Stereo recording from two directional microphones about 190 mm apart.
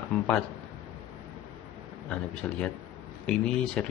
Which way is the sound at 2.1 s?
5° left (ahead or behind).